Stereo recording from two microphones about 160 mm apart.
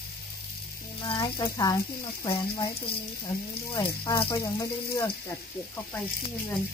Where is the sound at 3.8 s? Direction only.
30° left (ahead or behind).